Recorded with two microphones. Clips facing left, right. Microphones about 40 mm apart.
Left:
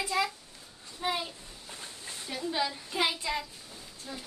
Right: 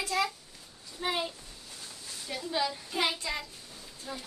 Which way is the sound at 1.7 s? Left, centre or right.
Left.